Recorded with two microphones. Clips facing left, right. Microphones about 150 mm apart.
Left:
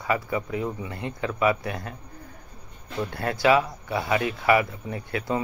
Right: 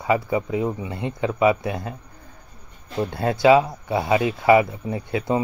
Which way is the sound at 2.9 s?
25° right (ahead or behind).